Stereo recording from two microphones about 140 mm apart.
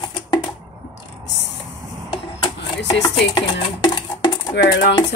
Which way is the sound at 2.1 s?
30° left (ahead or behind).